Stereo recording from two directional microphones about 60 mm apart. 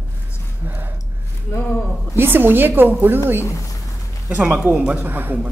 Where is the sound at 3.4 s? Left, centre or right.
Left.